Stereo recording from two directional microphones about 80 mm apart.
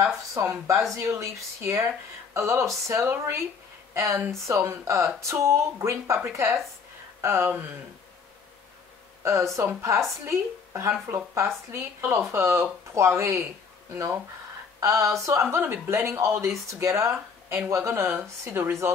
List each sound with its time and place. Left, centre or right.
0.0 s speech: right
9.2 s speech: right
14.8 s speech: right
15.5 s speech: right